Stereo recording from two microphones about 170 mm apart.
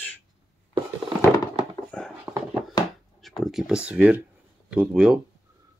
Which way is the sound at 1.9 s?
5° left (ahead or behind).